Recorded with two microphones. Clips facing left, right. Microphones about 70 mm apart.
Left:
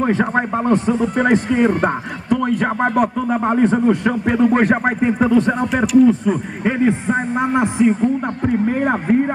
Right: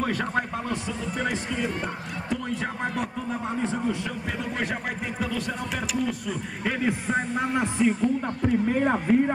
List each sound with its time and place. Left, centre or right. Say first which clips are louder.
0.0 s a man's voice: left 9 dB; left
8.0 s speech: left 6 dB; left